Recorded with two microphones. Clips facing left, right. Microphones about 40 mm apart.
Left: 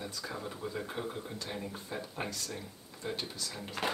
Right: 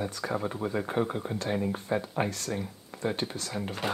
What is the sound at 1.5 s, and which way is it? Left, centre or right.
Speech, right.